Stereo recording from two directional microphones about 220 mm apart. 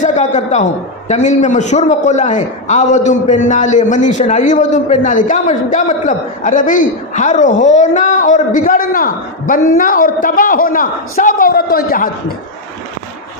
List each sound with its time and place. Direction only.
0.0 s a man's voice: 35° left (ahead or behind)